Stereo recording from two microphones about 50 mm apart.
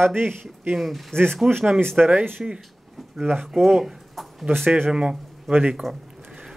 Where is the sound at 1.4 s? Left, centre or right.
Centre.